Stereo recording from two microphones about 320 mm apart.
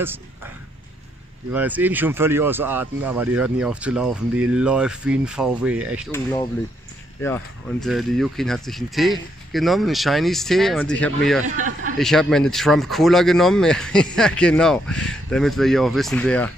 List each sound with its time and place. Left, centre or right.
1.5 s speech: centre
6.1 s speech: centre
11.4 s a man's voice: right
12.0 s speech: centre